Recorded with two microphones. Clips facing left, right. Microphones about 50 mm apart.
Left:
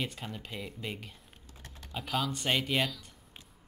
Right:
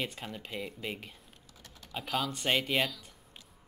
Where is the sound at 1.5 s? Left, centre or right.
Left.